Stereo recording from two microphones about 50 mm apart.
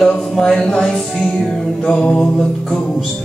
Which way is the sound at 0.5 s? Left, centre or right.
Centre.